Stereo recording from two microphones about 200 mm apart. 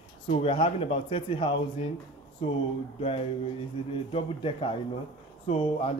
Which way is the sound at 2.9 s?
30° left (ahead or behind).